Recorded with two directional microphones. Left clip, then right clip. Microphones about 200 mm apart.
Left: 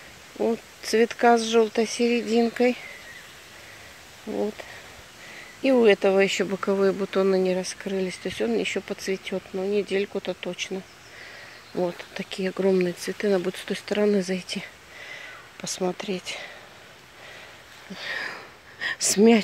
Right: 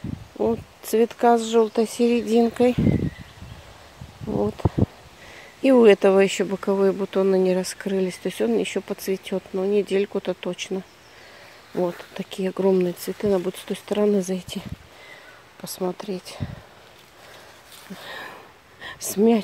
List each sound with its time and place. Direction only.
0.4 s speech: 15° right (ahead or behind)
5.6 s speech: 25° right (ahead or behind)
15.6 s speech: 5° right (ahead or behind)
18.0 s a sound: 10° right (ahead or behind)